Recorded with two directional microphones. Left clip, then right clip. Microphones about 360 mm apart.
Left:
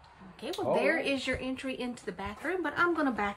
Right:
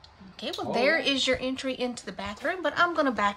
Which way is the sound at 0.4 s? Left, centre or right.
Centre.